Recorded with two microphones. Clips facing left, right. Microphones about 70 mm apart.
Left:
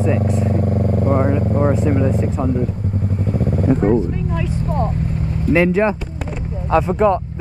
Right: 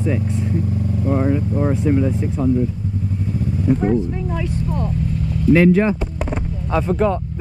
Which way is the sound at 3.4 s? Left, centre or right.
Left.